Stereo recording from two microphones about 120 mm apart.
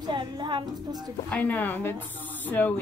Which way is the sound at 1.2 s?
15° left (ahead or behind).